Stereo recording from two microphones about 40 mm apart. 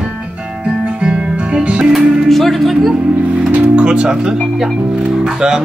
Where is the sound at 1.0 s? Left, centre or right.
Right.